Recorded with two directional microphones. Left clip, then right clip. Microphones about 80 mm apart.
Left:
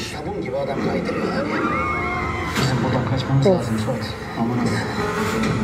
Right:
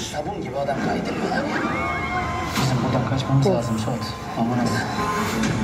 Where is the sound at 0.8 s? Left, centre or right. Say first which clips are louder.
Left 2 dB; right.